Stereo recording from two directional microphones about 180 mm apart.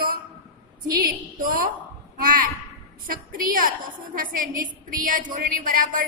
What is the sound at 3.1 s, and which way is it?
A woman's voice, 50° right (ahead or behind).